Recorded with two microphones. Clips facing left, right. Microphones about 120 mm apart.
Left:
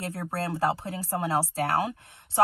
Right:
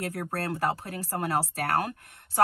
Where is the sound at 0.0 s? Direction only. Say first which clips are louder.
Even; 25° left (ahead or behind).